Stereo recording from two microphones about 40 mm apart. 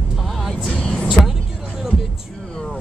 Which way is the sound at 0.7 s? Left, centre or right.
Left.